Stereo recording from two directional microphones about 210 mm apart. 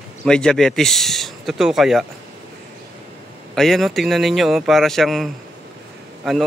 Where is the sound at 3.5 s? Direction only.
Centre (ahead or behind).